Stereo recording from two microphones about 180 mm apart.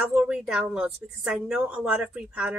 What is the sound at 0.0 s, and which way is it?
A woman's voice, 5° right (ahead or behind).